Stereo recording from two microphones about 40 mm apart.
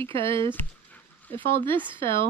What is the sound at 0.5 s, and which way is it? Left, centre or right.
Dog, left.